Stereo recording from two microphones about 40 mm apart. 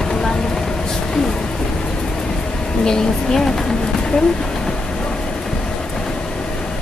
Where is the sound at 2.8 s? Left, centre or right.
Centre.